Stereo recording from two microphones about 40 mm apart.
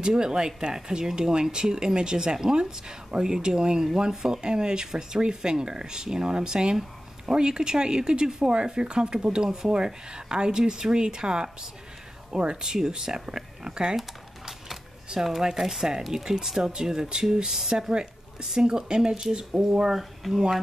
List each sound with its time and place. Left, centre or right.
0.0 s speech: centre
13.9 s typing: centre
15.0 s speech: centre
20.2 s speech: centre